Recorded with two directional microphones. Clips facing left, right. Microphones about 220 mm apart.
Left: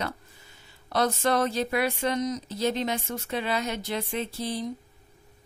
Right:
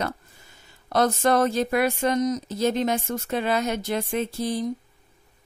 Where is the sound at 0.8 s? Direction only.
45° right (ahead or behind).